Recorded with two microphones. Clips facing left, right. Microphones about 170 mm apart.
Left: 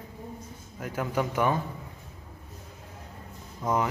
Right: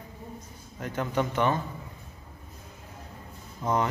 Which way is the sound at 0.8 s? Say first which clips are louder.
Right 1 dB; 5° left (ahead or behind).